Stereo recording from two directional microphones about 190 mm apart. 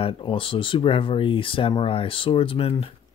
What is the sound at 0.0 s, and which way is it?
Speech, 25° left (ahead or behind).